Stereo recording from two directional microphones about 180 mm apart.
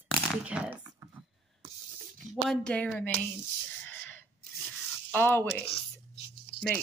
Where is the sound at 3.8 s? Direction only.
10° left (ahead or behind).